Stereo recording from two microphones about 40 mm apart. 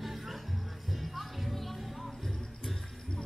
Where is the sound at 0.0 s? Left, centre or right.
Centre.